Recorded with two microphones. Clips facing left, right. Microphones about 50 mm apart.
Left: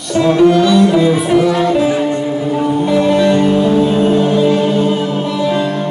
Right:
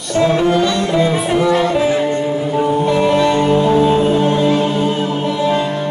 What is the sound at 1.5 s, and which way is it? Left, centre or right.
Music, right.